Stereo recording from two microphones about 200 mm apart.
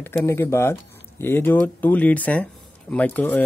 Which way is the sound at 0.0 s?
10° left (ahead or behind).